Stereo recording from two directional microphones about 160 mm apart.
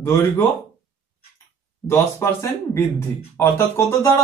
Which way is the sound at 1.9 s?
15° left (ahead or behind).